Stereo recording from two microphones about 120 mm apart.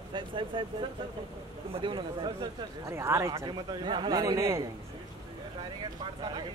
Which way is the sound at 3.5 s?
40° right (ahead or behind).